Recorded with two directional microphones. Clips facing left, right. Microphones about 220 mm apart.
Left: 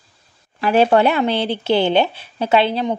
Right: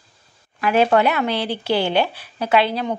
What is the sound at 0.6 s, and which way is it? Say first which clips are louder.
Speech: left 2 dB; 30° left (ahead or behind).